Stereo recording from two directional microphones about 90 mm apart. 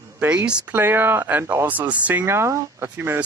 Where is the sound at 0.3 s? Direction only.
15° right (ahead or behind).